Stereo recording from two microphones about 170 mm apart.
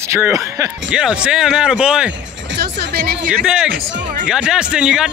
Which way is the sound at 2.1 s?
90° right.